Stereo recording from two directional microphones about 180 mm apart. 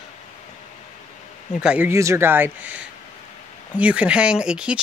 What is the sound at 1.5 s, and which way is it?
A woman's voice, 5° right (ahead or behind).